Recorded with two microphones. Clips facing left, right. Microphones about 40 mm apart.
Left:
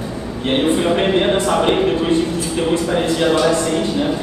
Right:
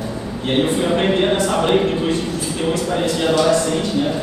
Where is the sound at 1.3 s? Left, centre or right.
Centre.